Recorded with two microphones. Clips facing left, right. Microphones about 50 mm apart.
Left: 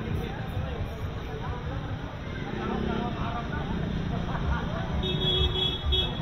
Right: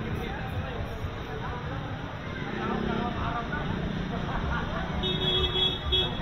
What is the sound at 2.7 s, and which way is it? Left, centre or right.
Vehicle, right.